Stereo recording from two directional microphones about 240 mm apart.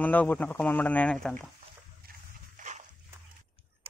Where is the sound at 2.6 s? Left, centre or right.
Right.